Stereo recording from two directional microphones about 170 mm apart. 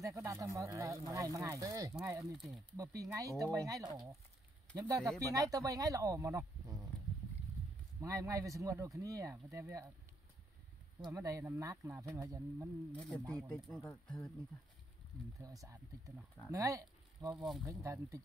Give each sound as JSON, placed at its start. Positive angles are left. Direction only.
{"t": 0.0, "sound": "speech", "side_deg": -15}
{"t": 2.1, "sound": "speech", "side_deg": 0}
{"t": 2.8, "sound": "speech", "side_deg": -20}
{"t": 8.0, "sound": "speech", "side_deg": -20}
{"t": 11.0, "sound": "speech", "side_deg": -20}
{"t": 13.4, "sound": "speech", "side_deg": 0}
{"t": 15.4, "sound": "speech", "side_deg": -20}
{"t": 17.3, "sound": "speech", "side_deg": 0}
{"t": 17.6, "sound": "speech", "side_deg": -20}